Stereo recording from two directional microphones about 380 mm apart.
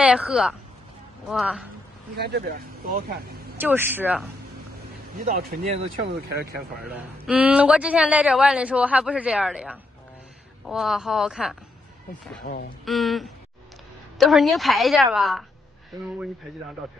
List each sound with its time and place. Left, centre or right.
0.0 s a man's voice: centre
2.1 s speech: right
3.5 s a man's voice: centre
5.1 s speech: right
6.9 s a man's voice: centre
12.8 s a man's voice: centre